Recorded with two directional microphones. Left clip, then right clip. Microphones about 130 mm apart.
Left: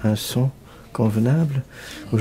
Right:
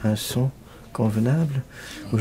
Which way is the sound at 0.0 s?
25° left (ahead or behind).